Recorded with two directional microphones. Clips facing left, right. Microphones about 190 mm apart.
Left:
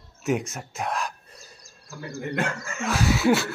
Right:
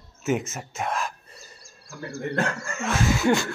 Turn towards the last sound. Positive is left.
turn(degrees=5)  # may be behind; listen again after turning